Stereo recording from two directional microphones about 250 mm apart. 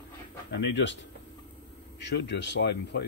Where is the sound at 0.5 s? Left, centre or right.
Left.